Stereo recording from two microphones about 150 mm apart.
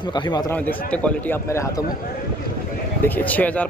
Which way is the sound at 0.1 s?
30° left (ahead or behind).